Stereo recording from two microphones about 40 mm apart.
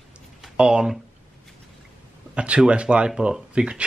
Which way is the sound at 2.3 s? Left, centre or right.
Right.